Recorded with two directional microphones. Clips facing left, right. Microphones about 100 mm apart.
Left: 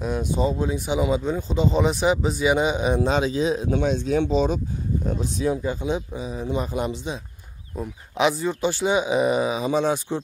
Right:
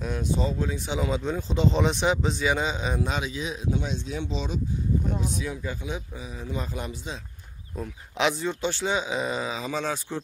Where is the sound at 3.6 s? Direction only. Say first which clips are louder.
Left 7 dB; 55° left (ahead or behind).